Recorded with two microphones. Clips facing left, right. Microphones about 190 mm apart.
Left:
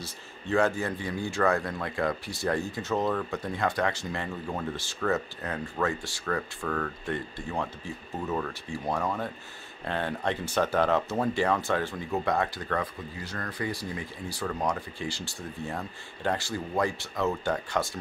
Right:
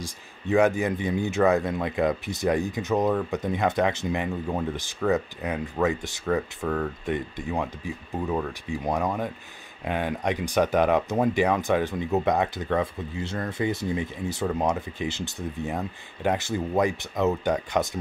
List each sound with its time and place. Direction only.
0.0 s speech: 15° right (ahead or behind)